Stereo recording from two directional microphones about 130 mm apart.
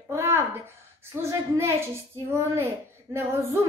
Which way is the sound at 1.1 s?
20° right (ahead or behind).